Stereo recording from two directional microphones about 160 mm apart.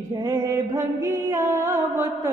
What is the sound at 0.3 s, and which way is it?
Music, 15° right (ahead or behind).